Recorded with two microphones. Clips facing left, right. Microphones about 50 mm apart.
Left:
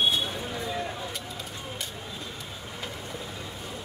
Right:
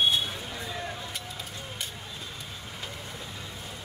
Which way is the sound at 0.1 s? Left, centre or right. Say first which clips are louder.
Left 1 dB; centre.